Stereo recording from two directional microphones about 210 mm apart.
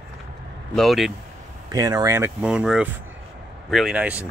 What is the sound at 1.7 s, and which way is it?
Speech, 15° right (ahead or behind).